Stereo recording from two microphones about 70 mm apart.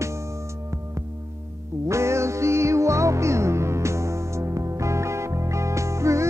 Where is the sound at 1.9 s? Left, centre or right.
Right.